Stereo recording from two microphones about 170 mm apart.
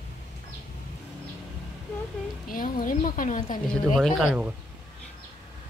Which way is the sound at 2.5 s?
55° left (ahead or behind).